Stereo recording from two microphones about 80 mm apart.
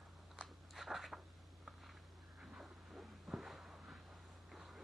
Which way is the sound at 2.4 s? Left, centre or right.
Centre.